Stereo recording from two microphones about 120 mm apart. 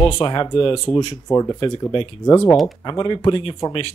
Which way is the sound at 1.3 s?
30° left (ahead or behind).